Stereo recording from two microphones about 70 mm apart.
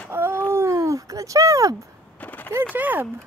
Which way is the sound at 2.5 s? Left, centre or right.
Right.